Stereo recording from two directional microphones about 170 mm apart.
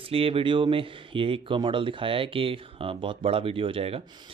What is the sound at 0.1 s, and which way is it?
Speech, 35° right (ahead or behind).